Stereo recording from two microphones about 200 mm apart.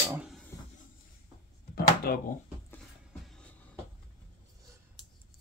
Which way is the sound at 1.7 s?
50° left (ahead or behind).